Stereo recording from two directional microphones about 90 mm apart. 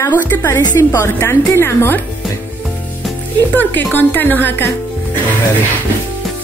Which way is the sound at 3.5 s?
20° left (ahead or behind).